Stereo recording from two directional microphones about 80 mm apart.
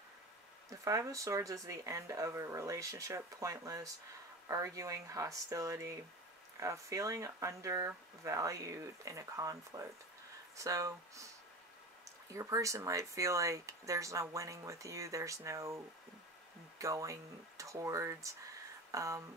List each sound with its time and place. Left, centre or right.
0.7 s speech: right
12.3 s speech: right